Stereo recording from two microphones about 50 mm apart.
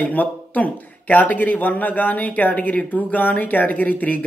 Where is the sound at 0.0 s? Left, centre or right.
Left.